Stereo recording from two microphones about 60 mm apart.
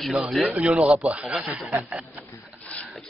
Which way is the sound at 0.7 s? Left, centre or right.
Centre.